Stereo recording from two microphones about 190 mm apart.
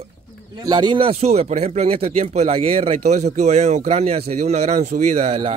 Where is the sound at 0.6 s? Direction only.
25° right (ahead or behind).